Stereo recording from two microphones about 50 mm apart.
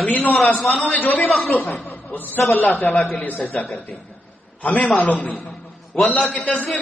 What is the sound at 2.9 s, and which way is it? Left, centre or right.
Speech, centre.